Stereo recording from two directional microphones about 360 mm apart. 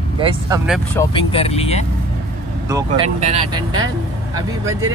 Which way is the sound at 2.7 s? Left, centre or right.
Centre.